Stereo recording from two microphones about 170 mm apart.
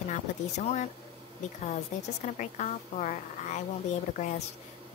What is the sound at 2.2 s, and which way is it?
A woman's voice, 45° left (ahead or behind).